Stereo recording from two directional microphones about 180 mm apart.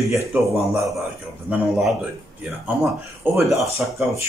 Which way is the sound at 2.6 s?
10° right (ahead or behind).